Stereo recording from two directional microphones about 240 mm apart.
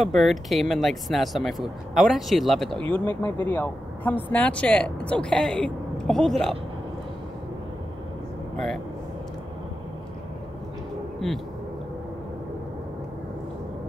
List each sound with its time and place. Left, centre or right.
0.0 s speech: centre
11.2 s speech: centre